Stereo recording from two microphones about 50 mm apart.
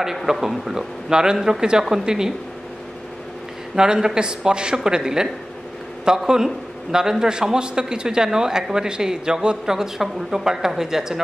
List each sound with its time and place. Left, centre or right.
0.0 s a man's voice: centre
3.7 s a man's voice: centre